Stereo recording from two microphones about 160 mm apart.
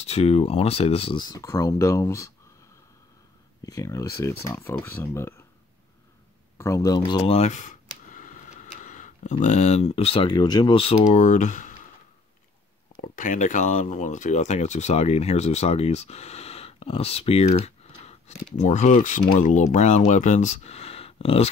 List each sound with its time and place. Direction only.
0.0 s speech: 40° left (ahead or behind); by 2.3 s 20° left (ahead or behind)
3.6 s speech: 20° left (ahead or behind)
6.6 s speech: 20° left (ahead or behind)
7.3 s speech: 50° left (ahead or behind)
13.1 s speech: 50° left (ahead or behind)